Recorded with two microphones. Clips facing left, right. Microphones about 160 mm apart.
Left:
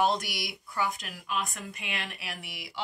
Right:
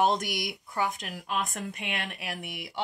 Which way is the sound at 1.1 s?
45° right (ahead or behind).